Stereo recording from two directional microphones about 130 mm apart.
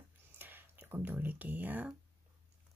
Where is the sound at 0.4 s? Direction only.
15° right (ahead or behind).